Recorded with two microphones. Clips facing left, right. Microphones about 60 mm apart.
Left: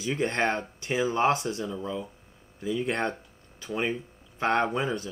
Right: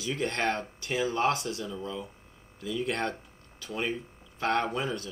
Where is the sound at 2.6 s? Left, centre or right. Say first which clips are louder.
Left 3 dB; left.